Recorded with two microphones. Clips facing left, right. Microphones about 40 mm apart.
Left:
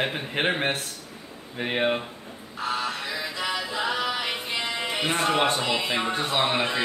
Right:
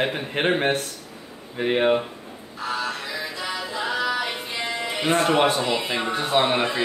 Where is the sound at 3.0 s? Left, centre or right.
Left.